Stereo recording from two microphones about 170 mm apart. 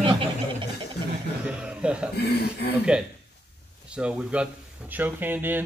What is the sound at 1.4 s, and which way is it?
Speech, 5° right (ahead or behind).